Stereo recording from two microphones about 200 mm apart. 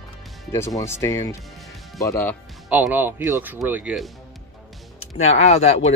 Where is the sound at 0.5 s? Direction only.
15° left (ahead or behind).